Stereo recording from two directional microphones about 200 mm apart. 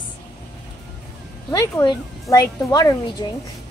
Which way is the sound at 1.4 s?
15° left (ahead or behind).